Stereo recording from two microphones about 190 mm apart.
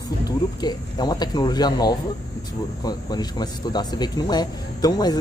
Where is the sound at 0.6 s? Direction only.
20° left (ahead or behind).